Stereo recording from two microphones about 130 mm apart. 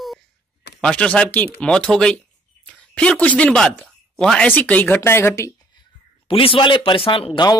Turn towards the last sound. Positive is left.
turn(degrees=35)  # may be behind; listen again after turning